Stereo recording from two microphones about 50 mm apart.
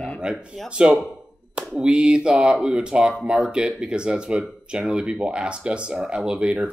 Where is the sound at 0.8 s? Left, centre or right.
Centre.